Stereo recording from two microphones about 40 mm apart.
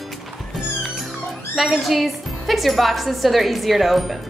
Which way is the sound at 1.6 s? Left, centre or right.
Centre.